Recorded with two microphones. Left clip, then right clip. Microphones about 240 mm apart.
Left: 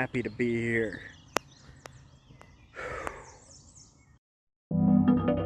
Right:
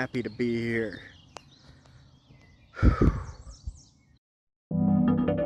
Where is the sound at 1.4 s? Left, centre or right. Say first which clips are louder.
Left 16 dB; left.